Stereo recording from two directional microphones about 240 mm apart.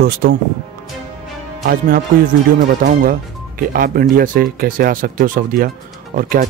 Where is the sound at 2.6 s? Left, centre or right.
Right.